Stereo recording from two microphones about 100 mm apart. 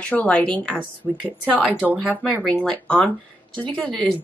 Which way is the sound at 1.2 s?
10° right (ahead or behind).